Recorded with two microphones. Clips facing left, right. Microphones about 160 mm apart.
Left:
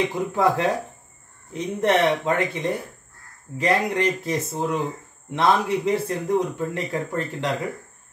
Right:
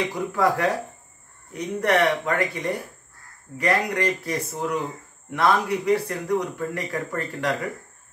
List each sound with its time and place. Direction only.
0.0 s speech: 25° left (ahead or behind)